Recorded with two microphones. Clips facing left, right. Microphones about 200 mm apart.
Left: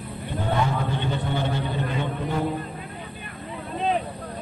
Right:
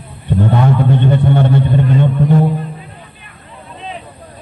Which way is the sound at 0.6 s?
60° right (ahead or behind).